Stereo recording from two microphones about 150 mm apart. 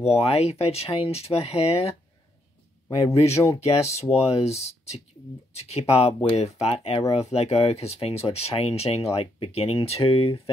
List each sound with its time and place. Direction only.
0.0 s speech: 45° left (ahead or behind)
3.1 s speech: 20° left (ahead or behind)
3.9 s speech: 45° left (ahead or behind)